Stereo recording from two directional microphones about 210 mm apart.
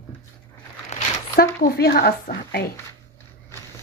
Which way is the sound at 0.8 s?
35° left (ahead or behind).